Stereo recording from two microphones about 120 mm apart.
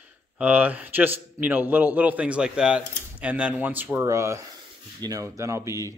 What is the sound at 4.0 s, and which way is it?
Speech, 25° right (ahead or behind).